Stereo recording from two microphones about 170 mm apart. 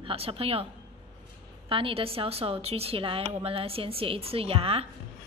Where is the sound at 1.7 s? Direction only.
30° right (ahead or behind).